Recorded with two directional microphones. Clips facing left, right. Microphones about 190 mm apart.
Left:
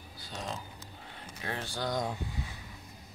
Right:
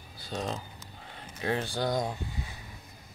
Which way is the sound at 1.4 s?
20° right (ahead or behind).